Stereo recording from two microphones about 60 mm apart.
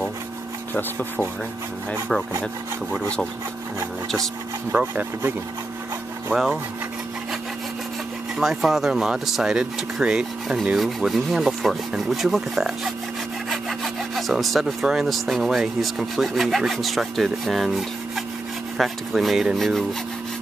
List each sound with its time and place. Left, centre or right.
0.7 s speech: left
2.9 s sawing: centre
8.4 s speech: centre